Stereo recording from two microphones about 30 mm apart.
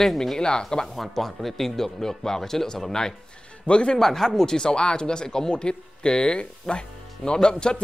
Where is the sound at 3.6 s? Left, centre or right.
Left.